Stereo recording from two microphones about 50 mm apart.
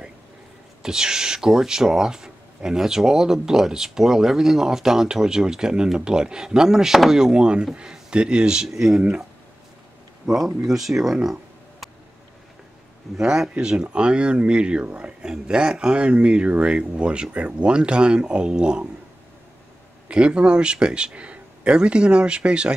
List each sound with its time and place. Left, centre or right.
0.8 s speech: centre
8.6 s speech: centre
10.3 s speech: centre
13.2 s speech: centre
20.1 s speech: right